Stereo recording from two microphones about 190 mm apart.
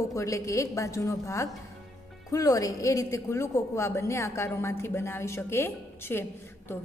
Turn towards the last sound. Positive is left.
turn(degrees=10)  # may be behind; listen again after turning